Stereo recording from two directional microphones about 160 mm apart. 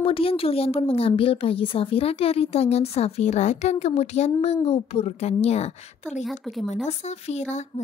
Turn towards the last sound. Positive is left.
turn(degrees=45)  # may be behind; listen again after turning